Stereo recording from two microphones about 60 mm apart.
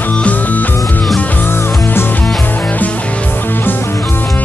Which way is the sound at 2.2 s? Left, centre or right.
Centre.